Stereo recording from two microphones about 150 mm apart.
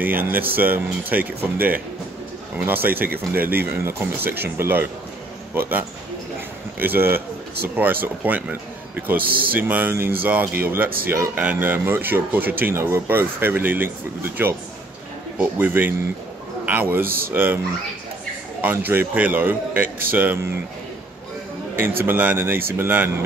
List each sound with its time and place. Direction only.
0.0 s a man's voice: 10° right (ahead or behind)
17.0 s speech: 75° right (ahead or behind)
17.3 s speech: 15° right (ahead or behind)
18.6 s speech: 10° right (ahead or behind)
22.0 s speech: 10° right (ahead or behind)